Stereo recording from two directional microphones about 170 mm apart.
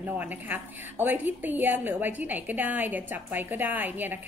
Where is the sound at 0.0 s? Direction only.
10° right (ahead or behind).